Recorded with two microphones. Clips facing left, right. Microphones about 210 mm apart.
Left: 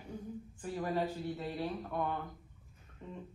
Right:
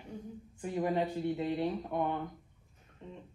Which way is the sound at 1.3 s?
20° right (ahead or behind).